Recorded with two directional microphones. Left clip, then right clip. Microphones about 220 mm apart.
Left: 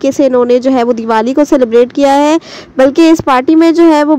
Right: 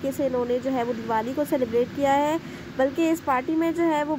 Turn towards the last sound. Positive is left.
turn(degrees=35)  # may be behind; listen again after turning